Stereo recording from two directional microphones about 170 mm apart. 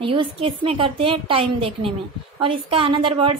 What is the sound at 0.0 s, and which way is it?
A woman's voice, 30° right (ahead or behind).